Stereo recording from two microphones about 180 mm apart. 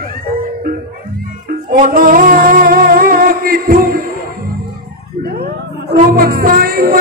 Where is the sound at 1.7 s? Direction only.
50° right (ahead or behind).